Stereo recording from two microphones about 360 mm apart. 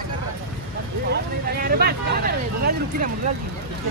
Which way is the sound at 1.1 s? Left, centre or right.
Right.